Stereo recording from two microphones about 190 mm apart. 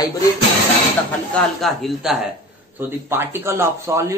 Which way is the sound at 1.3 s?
Centre (ahead or behind).